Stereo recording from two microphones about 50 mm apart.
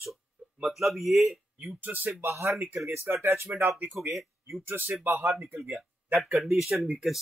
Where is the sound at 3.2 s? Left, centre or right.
Right.